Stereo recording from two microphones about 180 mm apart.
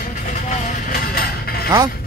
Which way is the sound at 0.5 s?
50° left (ahead or behind).